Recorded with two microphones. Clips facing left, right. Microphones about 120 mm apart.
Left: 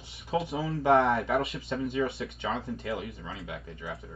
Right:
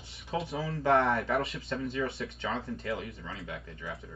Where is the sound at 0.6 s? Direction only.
25° left (ahead or behind).